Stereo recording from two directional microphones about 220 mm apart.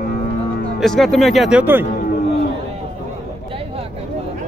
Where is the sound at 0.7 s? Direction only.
Centre (ahead or behind).